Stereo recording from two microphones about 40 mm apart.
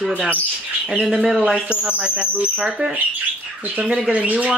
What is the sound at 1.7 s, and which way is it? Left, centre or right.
Speech, right.